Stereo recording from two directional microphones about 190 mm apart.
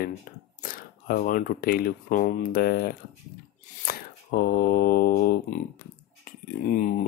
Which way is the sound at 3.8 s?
50° left (ahead or behind).